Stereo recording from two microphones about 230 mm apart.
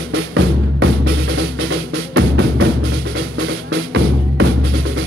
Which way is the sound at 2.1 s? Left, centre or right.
Right.